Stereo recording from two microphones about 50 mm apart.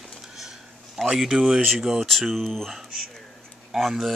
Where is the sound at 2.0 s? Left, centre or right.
Centre.